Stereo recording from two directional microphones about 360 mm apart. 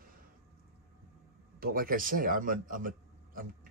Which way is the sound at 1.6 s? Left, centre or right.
Right.